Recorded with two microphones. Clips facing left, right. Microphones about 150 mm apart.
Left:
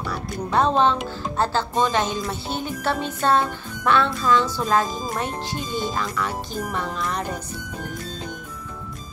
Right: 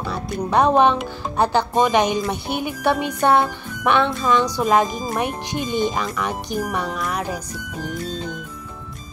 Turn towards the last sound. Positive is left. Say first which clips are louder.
# right 2 dB
turn(degrees=-5)  # may be behind; listen again after turning